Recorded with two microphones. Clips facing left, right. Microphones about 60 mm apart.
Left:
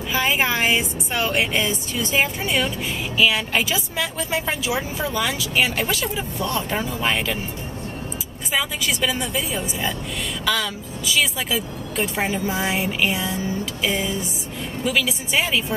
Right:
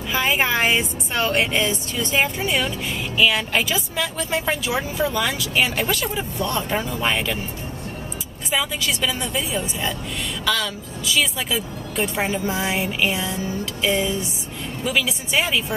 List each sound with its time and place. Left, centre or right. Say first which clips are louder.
0.1 s speech: right 1 dB; centre
8.5 s speech: even; centre